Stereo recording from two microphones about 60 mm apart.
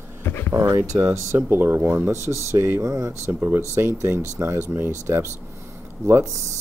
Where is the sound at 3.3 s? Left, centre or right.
Right.